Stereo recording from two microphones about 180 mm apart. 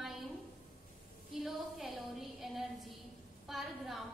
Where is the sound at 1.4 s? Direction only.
Centre (ahead or behind).